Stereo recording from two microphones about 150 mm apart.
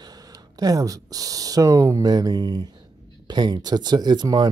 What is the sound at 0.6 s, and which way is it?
Speech, 25° right (ahead or behind).